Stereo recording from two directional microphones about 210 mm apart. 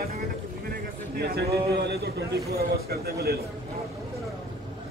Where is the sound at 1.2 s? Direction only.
50° right (ahead or behind).